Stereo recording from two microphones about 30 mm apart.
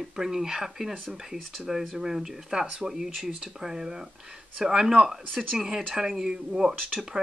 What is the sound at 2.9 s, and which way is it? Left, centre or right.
Speech, centre.